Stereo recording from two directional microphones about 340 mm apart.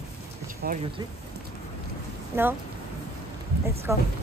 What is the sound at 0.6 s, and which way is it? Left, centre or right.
Speech, right.